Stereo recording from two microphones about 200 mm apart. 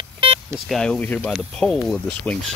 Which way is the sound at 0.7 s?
5° left (ahead or behind).